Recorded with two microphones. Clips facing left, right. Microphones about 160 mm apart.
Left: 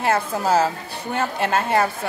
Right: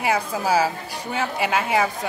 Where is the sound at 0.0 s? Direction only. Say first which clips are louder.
Left 2 dB; 10° right (ahead or behind).